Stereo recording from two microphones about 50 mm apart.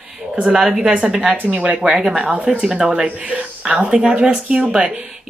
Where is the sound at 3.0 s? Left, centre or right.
Right.